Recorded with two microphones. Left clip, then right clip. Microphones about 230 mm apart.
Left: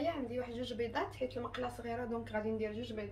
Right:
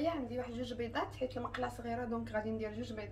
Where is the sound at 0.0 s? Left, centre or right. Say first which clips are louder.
Even; centre.